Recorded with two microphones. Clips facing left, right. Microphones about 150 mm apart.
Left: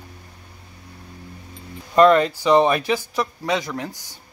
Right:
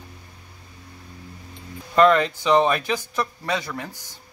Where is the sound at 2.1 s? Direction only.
35° left (ahead or behind).